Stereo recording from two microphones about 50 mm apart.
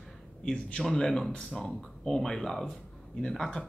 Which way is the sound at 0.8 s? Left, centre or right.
Centre.